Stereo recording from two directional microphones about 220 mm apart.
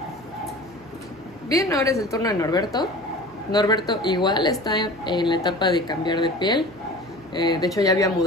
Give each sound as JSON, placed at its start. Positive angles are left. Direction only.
{"t": 1.5, "sound": "a woman's voice", "side_deg": 15}